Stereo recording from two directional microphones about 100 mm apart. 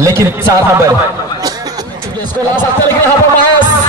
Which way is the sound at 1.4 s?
40° right (ahead or behind).